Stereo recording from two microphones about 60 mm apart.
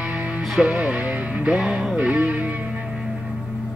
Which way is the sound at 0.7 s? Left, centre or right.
Right.